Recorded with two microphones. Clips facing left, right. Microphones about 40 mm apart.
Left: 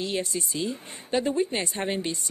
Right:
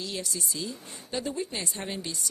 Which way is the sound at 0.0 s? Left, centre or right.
Left.